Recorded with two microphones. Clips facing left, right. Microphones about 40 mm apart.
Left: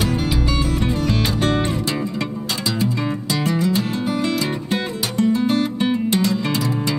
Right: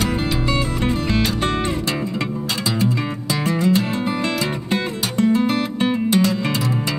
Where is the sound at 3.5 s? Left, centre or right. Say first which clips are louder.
Right 2 dB; centre.